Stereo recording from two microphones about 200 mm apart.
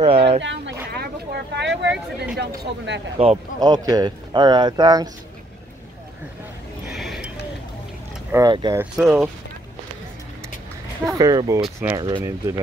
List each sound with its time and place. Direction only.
0.0 s a sound: 30° right (ahead or behind)
0.4 s speech: 65° right (ahead or behind)
0.8 s a sound: 50° right (ahead or behind)
2.3 s speech: 55° right (ahead or behind)
3.2 s speech: 25° right (ahead or behind)
6.9 s a sound: centre (ahead or behind)
8.3 s speech: 20° right (ahead or behind)
8.9 s speech: 5° right (ahead or behind)
11.1 s speech: 20° right (ahead or behind)